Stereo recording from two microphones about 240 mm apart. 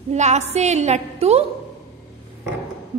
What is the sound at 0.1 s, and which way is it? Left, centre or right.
A woman's voice, right.